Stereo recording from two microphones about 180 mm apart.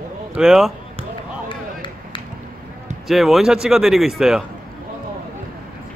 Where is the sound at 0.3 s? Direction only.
5° right (ahead or behind).